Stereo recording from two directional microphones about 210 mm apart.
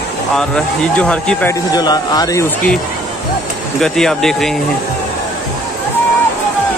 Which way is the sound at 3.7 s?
5° left (ahead or behind).